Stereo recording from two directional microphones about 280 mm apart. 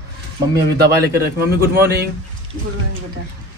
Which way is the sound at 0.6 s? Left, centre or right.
Right.